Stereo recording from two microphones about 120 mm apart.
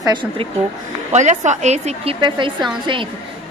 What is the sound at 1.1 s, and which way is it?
A woman's voice, 80° right.